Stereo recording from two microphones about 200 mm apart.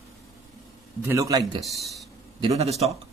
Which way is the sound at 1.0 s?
15° right (ahead or behind).